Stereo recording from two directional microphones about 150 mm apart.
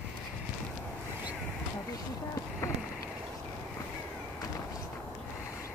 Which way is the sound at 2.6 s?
20° left (ahead or behind).